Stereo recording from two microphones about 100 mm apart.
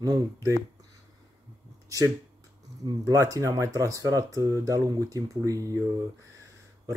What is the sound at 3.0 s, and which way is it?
Speech, 35° right (ahead or behind).